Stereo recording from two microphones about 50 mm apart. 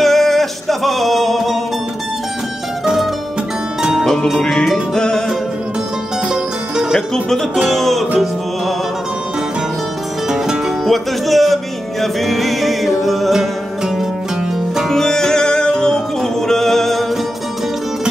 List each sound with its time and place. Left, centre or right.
0.0 s music: centre
2.8 s music: centre
4.9 s music: centre
6.2 s music: centre
7.6 s music: centre
10.3 s music: centre
10.9 s music: centre
14.9 s music: centre